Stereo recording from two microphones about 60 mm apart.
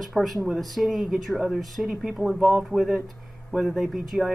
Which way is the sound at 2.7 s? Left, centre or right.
Centre.